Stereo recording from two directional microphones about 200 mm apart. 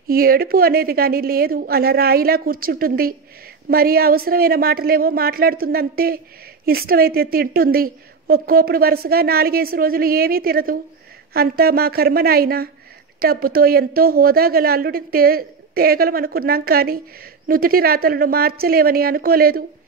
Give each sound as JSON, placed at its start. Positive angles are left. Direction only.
{"t": 0.1, "sound": "a woman's voice", "side_deg": -45}